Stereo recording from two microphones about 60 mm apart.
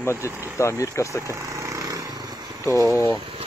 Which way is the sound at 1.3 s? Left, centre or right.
Right.